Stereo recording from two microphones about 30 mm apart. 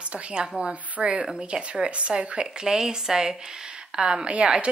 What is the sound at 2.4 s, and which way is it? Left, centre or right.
A woman's voice, right.